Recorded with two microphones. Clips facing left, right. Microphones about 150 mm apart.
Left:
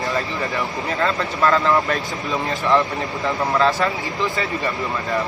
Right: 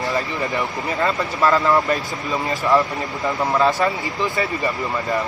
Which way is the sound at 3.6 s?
15° right (ahead or behind).